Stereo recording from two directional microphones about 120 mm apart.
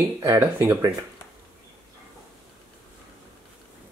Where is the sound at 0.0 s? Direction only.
20° right (ahead or behind).